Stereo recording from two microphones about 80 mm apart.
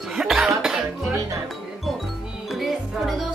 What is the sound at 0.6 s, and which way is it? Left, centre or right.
Music, centre.